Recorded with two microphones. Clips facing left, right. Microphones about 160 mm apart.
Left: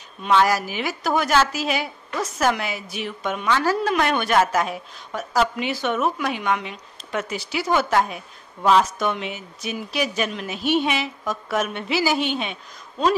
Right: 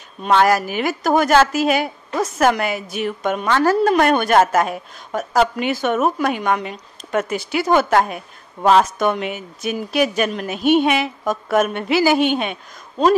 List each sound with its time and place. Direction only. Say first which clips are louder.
0.2 s a woman's voice: right 3 dB; 55° right (ahead or behind)